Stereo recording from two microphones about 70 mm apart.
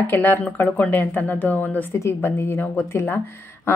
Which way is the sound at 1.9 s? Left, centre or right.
Left.